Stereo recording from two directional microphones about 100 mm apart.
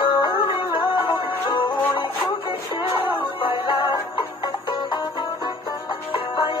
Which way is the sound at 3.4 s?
60° left (ahead or behind).